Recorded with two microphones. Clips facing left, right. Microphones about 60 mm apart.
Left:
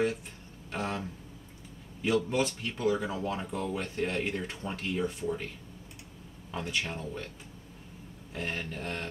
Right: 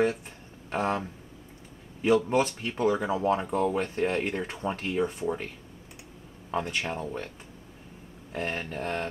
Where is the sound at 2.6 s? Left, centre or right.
Right.